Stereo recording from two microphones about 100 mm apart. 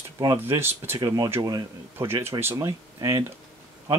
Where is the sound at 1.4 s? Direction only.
40° right (ahead or behind).